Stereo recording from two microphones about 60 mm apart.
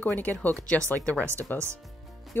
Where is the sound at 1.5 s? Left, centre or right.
Left.